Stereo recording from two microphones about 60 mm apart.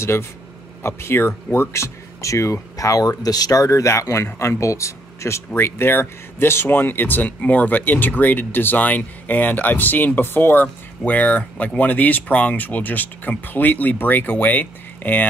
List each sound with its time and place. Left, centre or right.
0.0 s speech: left
5.5 s speech: left